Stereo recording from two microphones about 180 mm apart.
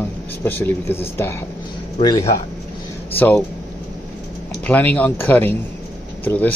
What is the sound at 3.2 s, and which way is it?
Speech, 10° left (ahead or behind).